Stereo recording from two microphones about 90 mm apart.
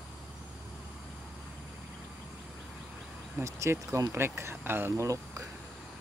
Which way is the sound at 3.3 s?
35° right (ahead or behind).